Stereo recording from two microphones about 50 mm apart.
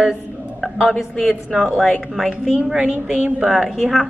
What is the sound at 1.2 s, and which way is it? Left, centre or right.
A woman's voice, centre.